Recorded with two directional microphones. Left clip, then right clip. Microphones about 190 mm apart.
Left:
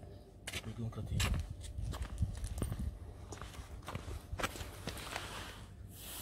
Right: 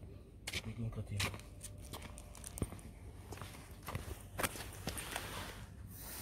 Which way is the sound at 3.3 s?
40° right (ahead or behind).